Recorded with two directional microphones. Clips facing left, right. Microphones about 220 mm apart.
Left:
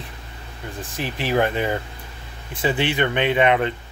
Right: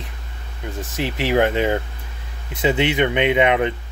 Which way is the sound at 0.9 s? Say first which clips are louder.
Right 3 dB; 20° right (ahead or behind).